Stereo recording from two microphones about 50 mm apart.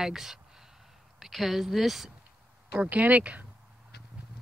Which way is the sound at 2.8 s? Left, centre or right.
Right.